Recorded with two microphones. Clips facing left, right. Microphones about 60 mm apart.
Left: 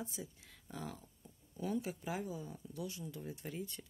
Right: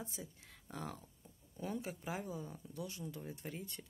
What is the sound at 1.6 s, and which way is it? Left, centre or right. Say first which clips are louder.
Speech: left 3 dB; right.